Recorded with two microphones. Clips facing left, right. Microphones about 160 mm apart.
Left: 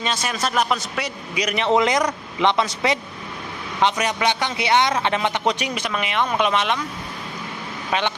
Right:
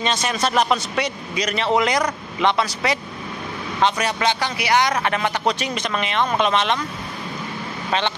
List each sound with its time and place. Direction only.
0.0 s a man's voice: 5° left (ahead or behind)